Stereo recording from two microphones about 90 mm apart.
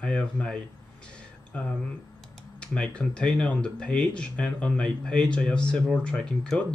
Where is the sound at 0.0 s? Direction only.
10° left (ahead or behind).